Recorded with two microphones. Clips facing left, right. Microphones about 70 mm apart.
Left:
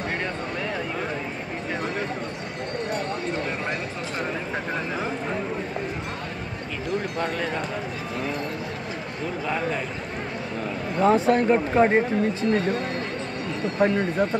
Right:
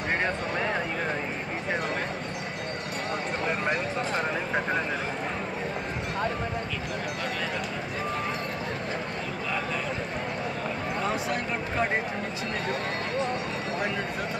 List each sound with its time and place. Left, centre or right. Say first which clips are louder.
11.1 s speech: left 14 dB; left